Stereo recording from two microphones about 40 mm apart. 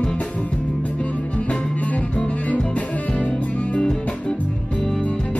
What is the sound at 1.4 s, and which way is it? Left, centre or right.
Music, left.